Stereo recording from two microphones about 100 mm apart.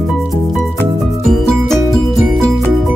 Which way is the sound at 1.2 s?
Centre (ahead or behind).